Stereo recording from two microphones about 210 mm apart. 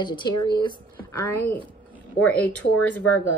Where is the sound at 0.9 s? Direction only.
10° left (ahead or behind).